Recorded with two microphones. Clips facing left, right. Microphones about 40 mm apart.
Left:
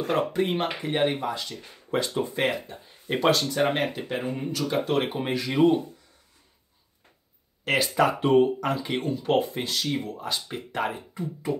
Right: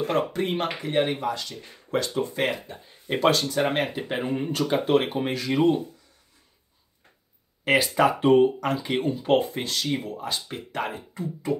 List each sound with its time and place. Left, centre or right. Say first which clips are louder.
0.0 s speech: even; centre
4.1 s speech: right 2 dB; centre
4.7 s speech: right 3 dB; centre
7.6 s speech: right 2 dB; centre
9.4 s speech: even; centre